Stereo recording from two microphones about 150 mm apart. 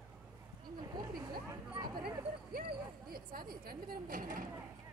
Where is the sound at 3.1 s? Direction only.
80° right.